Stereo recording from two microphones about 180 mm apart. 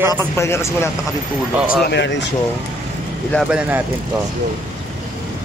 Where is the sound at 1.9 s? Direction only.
75° left (ahead or behind).